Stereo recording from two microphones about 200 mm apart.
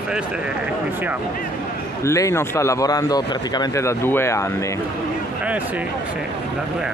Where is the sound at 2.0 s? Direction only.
15° left (ahead or behind).